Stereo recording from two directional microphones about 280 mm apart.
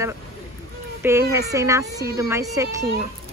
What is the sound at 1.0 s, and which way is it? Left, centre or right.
A woman's voice, centre.